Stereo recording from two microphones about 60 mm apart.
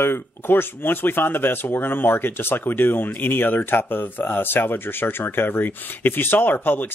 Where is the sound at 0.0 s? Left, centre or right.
Left.